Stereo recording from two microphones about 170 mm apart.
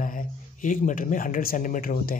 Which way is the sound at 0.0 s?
50° left (ahead or behind).